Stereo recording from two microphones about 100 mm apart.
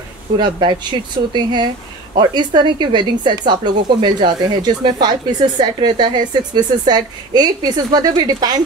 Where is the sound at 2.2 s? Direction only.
50° right (ahead or behind).